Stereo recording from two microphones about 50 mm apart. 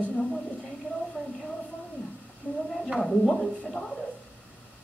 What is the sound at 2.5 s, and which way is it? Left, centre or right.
Speech, left.